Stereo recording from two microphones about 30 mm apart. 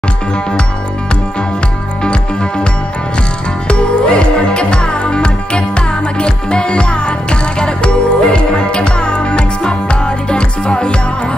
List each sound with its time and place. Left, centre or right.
3.6 s music: left